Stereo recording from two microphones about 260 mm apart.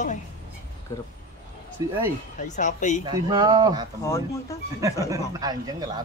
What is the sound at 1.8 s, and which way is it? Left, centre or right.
Speech, centre.